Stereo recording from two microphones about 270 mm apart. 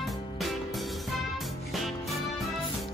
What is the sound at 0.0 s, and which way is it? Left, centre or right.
Music, centre.